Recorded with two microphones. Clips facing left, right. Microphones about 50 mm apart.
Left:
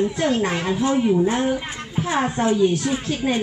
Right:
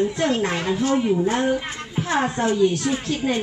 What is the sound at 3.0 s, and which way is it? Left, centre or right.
Music, centre.